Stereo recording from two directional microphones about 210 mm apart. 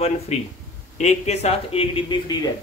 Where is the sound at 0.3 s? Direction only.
30° left (ahead or behind).